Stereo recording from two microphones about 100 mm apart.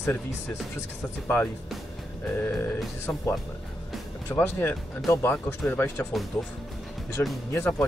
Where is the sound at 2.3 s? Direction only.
20° left (ahead or behind).